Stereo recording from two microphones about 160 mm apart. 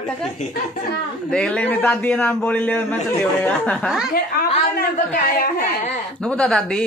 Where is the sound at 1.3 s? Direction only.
5° left (ahead or behind).